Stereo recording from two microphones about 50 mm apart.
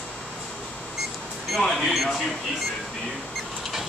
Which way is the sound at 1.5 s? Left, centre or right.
Centre.